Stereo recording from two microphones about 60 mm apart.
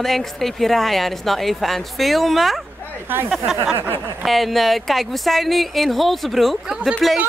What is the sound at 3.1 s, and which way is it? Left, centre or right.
Speech, right.